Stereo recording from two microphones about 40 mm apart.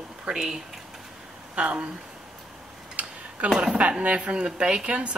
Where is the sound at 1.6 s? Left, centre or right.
Right.